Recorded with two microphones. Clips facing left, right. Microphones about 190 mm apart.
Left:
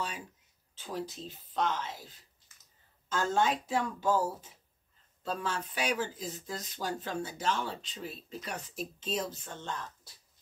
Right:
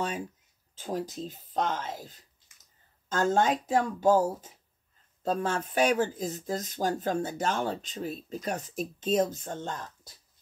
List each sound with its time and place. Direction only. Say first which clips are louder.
0.7 s speech: right 5 dB; 45° right (ahead or behind)
2.5 s a sound: even; 15° right (ahead or behind)
3.1 s speech: right 4 dB; 45° right (ahead or behind)